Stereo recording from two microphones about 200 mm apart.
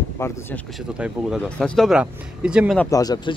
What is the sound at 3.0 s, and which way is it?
Speech, 20° left (ahead or behind).